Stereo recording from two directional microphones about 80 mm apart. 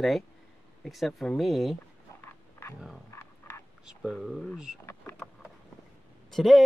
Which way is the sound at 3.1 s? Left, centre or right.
Left.